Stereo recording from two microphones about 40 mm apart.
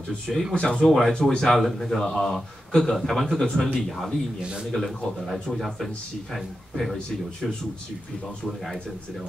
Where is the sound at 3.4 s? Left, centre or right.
Centre.